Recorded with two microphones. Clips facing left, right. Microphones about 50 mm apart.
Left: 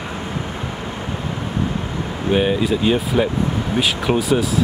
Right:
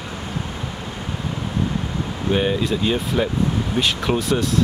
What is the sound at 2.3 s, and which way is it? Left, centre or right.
Speech, centre.